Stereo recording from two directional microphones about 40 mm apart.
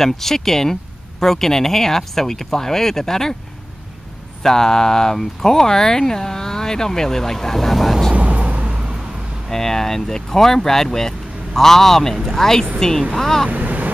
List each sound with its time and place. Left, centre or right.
0.0 s speech: centre
4.4 s speech: centre
8.1 s vehicle: right
9.5 s speech: centre
13.5 s wind noise: right